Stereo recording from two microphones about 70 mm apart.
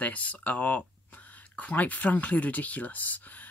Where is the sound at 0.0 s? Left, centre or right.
Left.